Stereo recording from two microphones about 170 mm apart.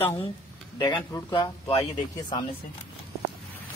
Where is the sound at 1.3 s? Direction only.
35° left (ahead or behind).